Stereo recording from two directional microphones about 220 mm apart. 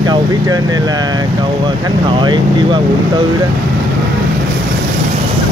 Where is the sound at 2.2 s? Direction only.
20° right (ahead or behind).